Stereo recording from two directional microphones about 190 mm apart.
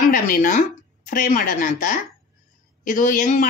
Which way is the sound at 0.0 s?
45° left (ahead or behind).